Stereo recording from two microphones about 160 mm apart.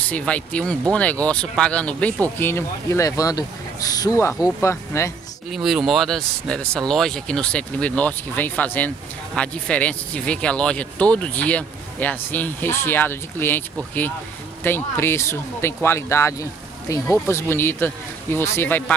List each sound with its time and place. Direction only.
0.0 s speech: 10° left (ahead or behind)
5.5 s speech: centre (ahead or behind)